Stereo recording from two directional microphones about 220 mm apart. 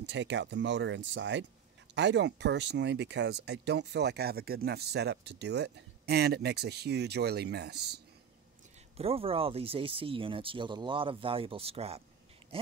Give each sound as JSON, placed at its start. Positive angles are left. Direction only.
{"t": 0.0, "sound": "speech", "side_deg": -55}
{"t": 8.9, "sound": "speech", "side_deg": -25}